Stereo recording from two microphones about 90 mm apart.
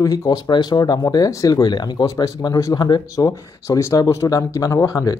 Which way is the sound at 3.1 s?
40° left (ahead or behind).